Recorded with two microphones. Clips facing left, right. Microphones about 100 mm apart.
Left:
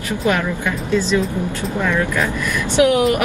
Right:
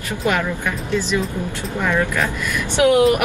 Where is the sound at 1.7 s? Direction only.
15° right (ahead or behind).